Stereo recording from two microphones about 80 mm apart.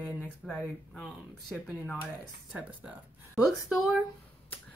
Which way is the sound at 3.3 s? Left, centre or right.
Centre.